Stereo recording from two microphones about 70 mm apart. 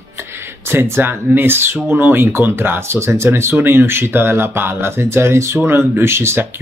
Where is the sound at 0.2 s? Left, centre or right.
Right.